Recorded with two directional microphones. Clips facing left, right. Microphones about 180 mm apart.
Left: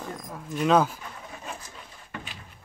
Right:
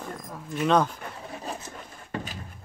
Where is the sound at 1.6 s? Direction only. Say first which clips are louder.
Right 5 dB; 35° right (ahead or behind).